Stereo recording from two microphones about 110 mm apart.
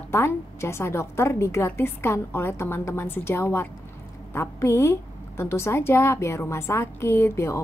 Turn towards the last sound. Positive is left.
turn(degrees=25)  # may be behind; listen again after turning